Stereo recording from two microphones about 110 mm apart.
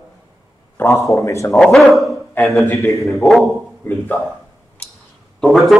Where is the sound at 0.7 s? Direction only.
30° left (ahead or behind).